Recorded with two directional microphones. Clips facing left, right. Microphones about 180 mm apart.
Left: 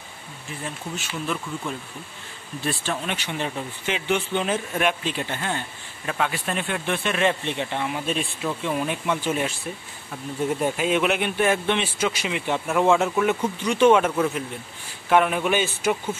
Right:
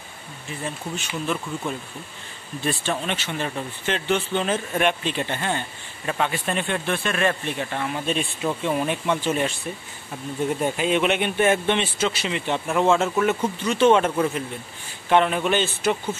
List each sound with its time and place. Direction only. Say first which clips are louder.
0.9 s speech: right 1 dB; centre (ahead or behind)
2.6 s speech: right 2 dB; centre (ahead or behind)
3.2 s speech: right 1 dB; 15° left (ahead or behind)
6.9 s speech: left 2 dB; 20° left (ahead or behind)
8.1 s speech: right 2 dB; centre (ahead or behind)
10.6 s speech: right 1 dB; 5° left (ahead or behind)